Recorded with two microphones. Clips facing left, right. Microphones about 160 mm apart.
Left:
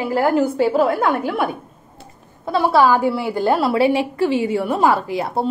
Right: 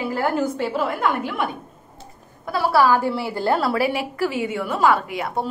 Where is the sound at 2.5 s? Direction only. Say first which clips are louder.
Left 3 dB; 20° left (ahead or behind).